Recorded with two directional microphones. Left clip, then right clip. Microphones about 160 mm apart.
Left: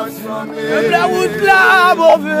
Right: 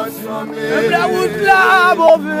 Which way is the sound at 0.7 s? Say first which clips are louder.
Left 1 dB; 25° left (ahead or behind).